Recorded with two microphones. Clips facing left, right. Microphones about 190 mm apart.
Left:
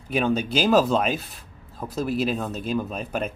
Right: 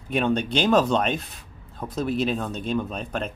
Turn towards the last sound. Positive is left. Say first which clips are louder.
# left 1 dB
turn(degrees=5)  # may be behind; listen again after turning